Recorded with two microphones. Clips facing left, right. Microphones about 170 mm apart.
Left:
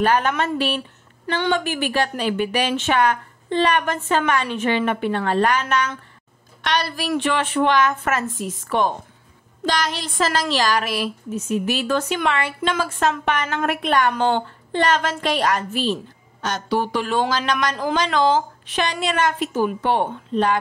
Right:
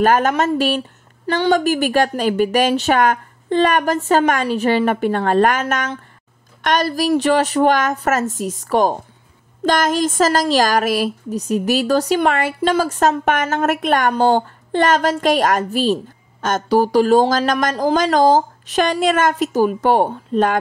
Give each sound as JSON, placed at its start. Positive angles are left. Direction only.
{"t": 0.0, "sound": "a woman's voice", "side_deg": -45}